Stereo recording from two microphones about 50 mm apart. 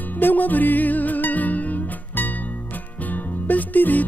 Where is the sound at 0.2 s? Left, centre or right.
Left.